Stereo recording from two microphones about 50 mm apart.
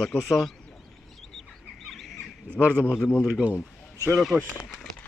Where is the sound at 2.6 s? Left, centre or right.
Right.